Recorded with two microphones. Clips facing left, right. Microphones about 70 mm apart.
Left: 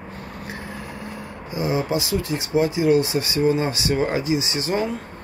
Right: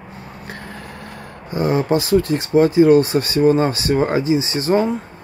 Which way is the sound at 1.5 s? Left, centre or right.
Right.